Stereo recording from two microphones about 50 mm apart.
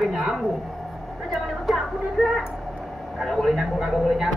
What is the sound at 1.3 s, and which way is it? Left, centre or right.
A woman's voice, centre.